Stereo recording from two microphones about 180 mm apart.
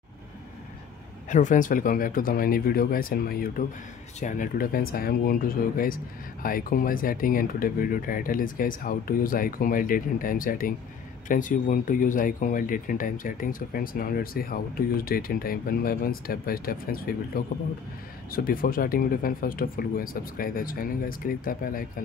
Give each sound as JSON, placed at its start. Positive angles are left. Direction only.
{"t": 1.3, "sound": "speech", "side_deg": 45}